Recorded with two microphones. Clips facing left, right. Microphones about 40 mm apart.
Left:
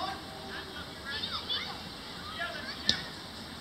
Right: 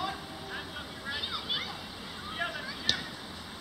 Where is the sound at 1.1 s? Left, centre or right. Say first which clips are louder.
Right 2 dB; centre.